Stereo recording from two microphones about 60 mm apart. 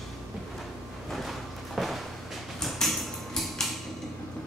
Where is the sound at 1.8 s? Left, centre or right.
Centre.